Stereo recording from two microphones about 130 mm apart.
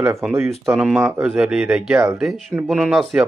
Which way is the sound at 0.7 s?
5° right (ahead or behind).